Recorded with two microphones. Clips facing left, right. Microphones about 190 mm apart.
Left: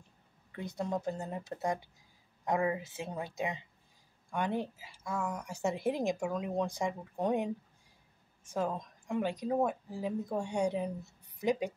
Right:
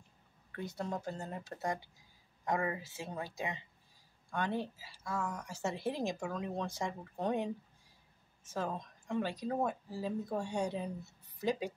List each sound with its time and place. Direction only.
0.5 s a woman's voice: 15° left (ahead or behind)
8.5 s a woman's voice: 15° left (ahead or behind)